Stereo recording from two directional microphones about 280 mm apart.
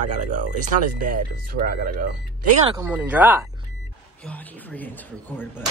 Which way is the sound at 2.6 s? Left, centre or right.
Centre.